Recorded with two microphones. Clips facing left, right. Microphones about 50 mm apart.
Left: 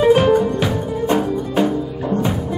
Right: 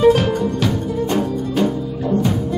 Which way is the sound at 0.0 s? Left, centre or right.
Centre.